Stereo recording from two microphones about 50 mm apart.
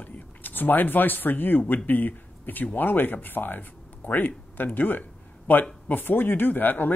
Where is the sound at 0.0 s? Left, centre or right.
Left.